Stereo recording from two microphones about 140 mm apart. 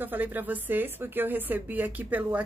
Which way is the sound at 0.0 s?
15° right (ahead or behind).